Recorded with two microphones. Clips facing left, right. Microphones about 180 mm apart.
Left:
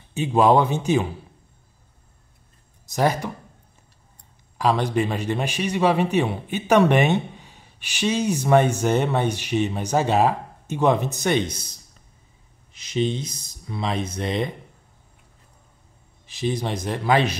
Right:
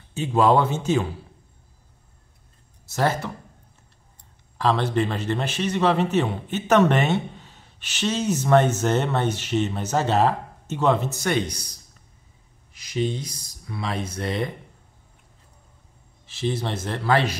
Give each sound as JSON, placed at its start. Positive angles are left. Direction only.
{"t": 0.1, "sound": "a man's voice", "side_deg": 15}
{"t": 2.9, "sound": "a man's voice", "side_deg": 15}
{"t": 4.6, "sound": "a man's voice", "side_deg": 15}
{"t": 12.7, "sound": "speech", "side_deg": 25}
{"t": 16.3, "sound": "a man's voice", "side_deg": 15}